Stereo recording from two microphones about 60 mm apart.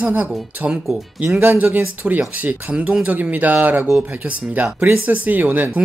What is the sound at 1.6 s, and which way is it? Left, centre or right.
Speech, right.